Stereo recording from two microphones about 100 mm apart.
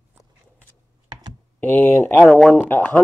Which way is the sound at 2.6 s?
15° left (ahead or behind).